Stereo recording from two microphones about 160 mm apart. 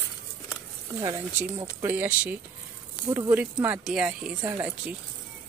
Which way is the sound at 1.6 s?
15° right (ahead or behind).